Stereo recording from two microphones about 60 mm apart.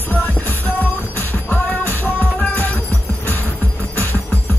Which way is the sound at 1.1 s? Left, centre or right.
Left.